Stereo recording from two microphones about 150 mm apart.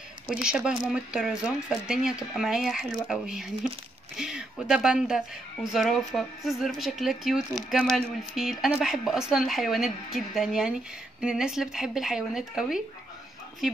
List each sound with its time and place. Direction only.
0.3 s a woman's voice: 5° right (ahead or behind)